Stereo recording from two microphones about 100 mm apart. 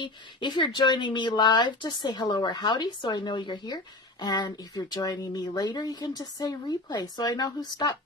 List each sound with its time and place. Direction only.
0.0 s speech: 55° left (ahead or behind)